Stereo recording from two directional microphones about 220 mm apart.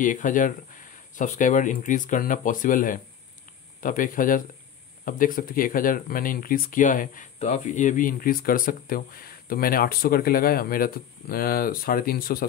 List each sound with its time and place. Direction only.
0.0 s speech: 35° left (ahead or behind)